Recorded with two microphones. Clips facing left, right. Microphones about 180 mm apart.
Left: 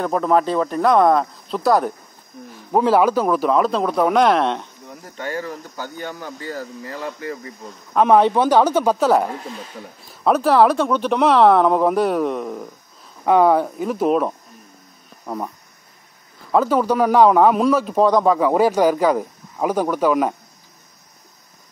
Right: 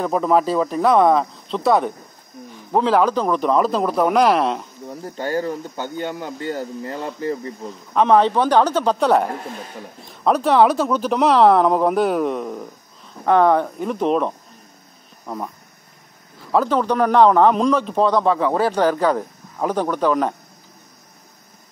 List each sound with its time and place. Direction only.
0.0 s speech: centre (ahead or behind)
4.8 s speech: 35° right (ahead or behind)
7.9 s a man's voice: 10° left (ahead or behind)
16.5 s a man's voice: 5° left (ahead or behind)